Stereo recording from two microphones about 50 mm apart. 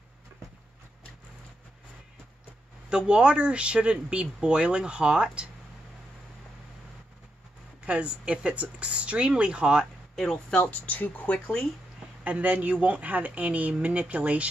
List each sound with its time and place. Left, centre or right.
2.9 s speech: right
7.8 s speech: right
10.1 s speech: centre
10.5 s speech: left
12.3 s speech: right